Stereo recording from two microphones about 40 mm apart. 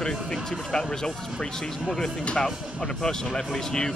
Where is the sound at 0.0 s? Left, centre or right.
Centre.